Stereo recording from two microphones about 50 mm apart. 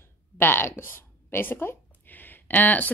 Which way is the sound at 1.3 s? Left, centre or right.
Left.